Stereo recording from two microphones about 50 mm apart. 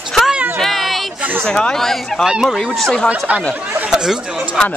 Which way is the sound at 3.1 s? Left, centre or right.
Right.